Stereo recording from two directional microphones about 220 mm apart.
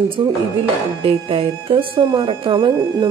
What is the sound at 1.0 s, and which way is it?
Speech, 25° right (ahead or behind).